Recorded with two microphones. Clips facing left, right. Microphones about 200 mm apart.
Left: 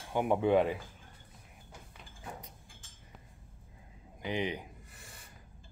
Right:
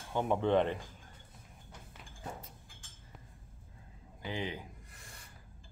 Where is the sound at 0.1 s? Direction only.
10° left (ahead or behind).